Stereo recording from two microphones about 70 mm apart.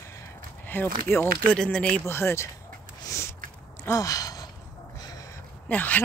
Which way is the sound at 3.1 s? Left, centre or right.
Left.